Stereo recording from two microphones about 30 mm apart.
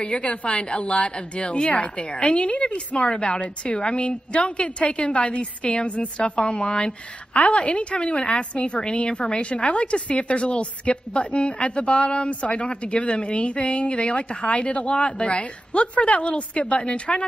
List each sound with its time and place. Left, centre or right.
0.0 s a woman's voice: left
7.3 s a woman's voice: left